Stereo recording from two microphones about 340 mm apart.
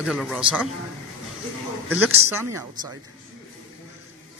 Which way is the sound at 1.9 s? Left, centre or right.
Centre.